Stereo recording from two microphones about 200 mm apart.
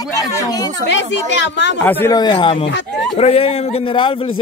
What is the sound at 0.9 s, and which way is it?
Speech, 65° left (ahead or behind).